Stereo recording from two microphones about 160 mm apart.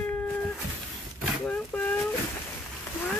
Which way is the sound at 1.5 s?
10° left (ahead or behind).